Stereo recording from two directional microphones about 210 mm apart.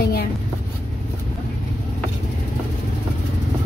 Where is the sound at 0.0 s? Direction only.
45° left (ahead or behind).